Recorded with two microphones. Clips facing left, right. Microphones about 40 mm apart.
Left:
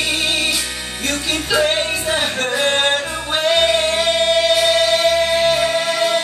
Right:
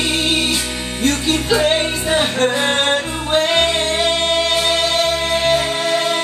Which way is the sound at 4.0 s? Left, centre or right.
Centre.